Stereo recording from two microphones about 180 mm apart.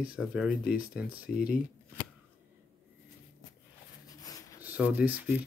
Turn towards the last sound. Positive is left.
turn(degrees=-10)  # may be behind; listen again after turning